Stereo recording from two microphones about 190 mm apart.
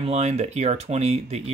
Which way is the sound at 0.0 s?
35° right (ahead or behind).